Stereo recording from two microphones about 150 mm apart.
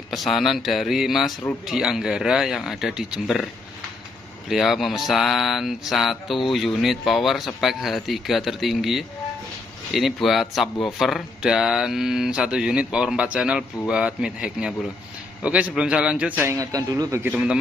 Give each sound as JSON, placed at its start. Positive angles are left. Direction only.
{"t": 0.1, "sound": "speech", "side_deg": 0}
{"t": 4.5, "sound": "a man's voice", "side_deg": 0}
{"t": 16.5, "sound": "a man's voice", "side_deg": -20}